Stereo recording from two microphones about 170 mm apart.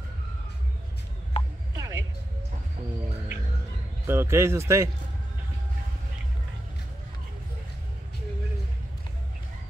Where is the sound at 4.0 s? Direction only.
15° right (ahead or behind).